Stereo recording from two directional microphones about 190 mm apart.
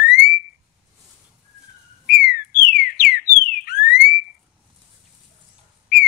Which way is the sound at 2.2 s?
50° left (ahead or behind).